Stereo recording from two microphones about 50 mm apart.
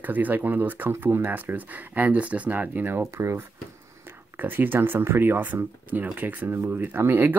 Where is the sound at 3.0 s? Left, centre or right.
Right.